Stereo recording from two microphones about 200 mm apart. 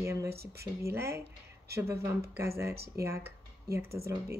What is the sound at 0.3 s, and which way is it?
Speech, 50° right (ahead or behind).